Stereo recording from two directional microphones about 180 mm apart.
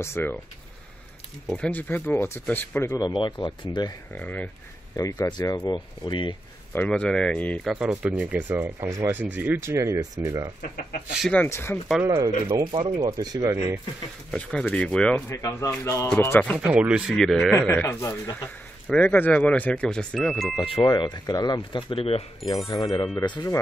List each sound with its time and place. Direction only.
0.0 s speech: 15° left (ahead or behind)
1.5 s speech: 10° left (ahead or behind)
2.9 s speech: 25° left (ahead or behind)
4.1 s speech: 10° left (ahead or behind)
4.9 s speech: 20° left (ahead or behind)
6.7 s speech: 10° left (ahead or behind); by 10.5 s 15° right (ahead or behind)
10.6 s speech: 55° left (ahead or behind)
11.1 s speech: centre (ahead or behind)
11.4 s speech: 15° left (ahead or behind)
12.0 s speech: 15° right (ahead or behind)
14.3 s speech: 5° left (ahead or behind)
15.3 s speech: 20° left (ahead or behind)
16.6 s speech: 5° right (ahead or behind)
20.5 s speech: 25° left (ahead or behind)